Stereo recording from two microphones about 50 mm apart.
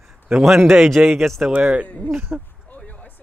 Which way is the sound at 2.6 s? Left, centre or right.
Left.